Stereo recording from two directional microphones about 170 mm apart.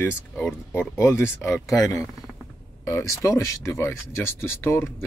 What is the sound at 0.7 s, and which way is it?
Speech, 15° left (ahead or behind).